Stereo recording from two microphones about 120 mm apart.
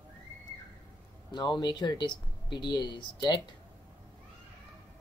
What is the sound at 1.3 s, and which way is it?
Speech, 35° left (ahead or behind).